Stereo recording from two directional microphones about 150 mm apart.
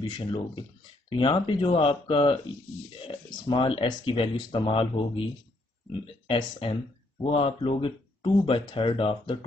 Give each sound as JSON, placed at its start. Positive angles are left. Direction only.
{"t": 0.0, "sound": "speech", "side_deg": 30}